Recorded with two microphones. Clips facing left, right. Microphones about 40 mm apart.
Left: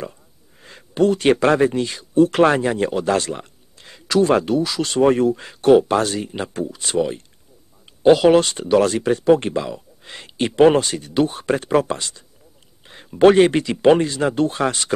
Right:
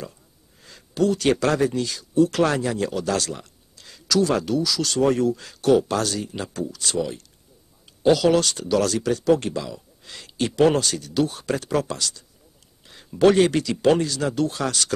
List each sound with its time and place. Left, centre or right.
0.6 s speech: left